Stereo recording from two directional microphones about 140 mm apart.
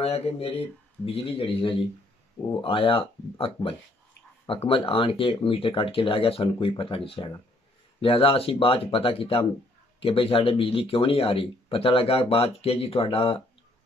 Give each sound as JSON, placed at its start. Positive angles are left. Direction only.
{"t": 0.0, "sound": "speech", "side_deg": 50}